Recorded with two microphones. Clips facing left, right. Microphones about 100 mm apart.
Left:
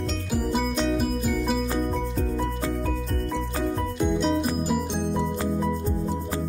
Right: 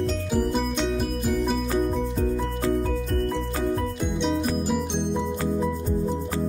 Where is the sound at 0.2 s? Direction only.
Centre (ahead or behind).